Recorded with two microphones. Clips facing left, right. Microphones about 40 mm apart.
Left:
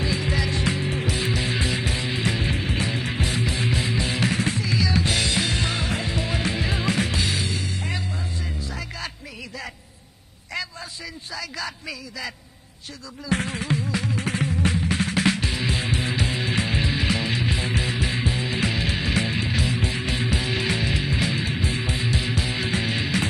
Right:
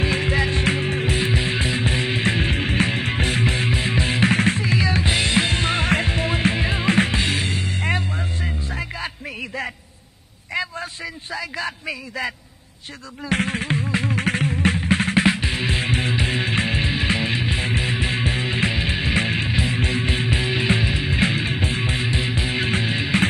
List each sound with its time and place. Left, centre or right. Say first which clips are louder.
0.0 s music: right 4 dB; right
11.3 s speech: right 4 dB; right
13.3 s music: right 3 dB; right
18.7 s music: right 2 dB; right
19.1 s music: right 3 dB; right
21.1 s music: right 4 dB; right
22.8 s music: right 2 dB; centre